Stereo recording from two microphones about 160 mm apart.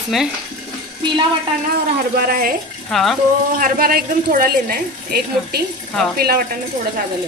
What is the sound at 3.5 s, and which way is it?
A woman's voice, 60° right (ahead or behind).